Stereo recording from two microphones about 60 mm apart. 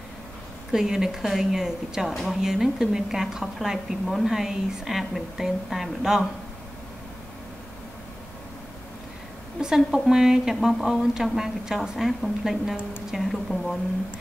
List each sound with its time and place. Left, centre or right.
0.7 s a woman's voice: centre
9.6 s a woman's voice: centre